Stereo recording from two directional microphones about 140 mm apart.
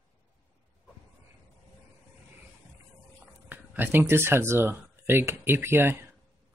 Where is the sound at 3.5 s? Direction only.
15° right (ahead or behind).